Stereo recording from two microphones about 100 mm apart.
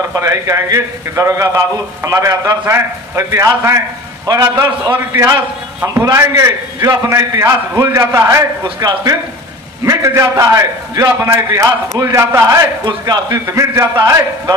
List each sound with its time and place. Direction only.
0.1 s a man's voice: 30° right (ahead or behind)
4.3 s a man's voice: 40° right (ahead or behind)
5.9 s a man's voice: 30° right (ahead or behind)